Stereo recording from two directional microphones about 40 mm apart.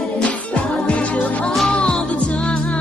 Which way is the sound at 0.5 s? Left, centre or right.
Left.